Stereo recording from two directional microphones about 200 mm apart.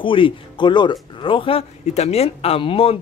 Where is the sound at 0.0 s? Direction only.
25° left (ahead or behind).